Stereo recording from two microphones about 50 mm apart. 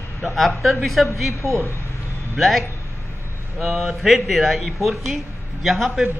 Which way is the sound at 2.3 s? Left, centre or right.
Centre.